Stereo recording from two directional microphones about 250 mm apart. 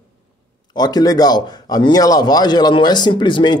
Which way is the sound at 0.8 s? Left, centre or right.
Centre.